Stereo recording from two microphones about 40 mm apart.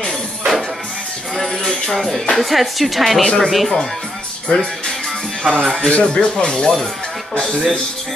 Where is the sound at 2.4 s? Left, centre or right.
Centre.